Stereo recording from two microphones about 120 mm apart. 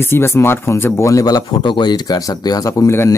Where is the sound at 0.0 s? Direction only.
20° left (ahead or behind).